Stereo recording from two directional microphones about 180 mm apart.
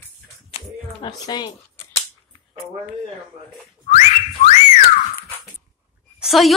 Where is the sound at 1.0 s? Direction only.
25° left (ahead or behind).